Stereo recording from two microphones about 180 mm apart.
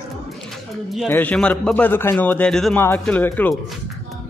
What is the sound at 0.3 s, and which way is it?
Music, centre (ahead or behind).